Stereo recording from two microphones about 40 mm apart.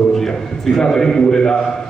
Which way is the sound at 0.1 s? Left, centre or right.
Centre.